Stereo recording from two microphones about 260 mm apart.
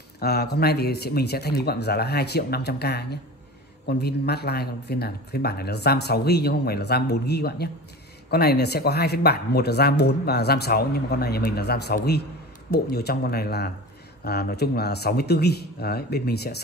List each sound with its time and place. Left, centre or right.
0.2 s speech: left